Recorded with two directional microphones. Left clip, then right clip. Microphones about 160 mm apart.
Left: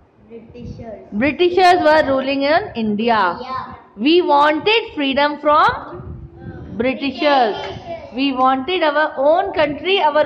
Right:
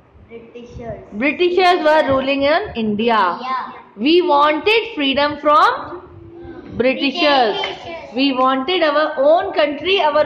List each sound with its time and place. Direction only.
1.1 s a woman's voice: 30° left (ahead or behind); by 5.8 s 5° left (ahead or behind)
6.8 s a woman's voice: 5° left (ahead or behind)